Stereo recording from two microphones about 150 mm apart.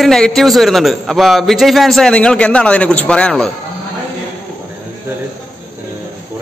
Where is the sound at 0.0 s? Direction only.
Centre (ahead or behind).